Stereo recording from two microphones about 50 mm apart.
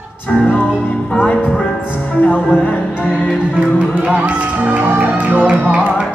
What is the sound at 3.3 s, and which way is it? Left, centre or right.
Music, centre.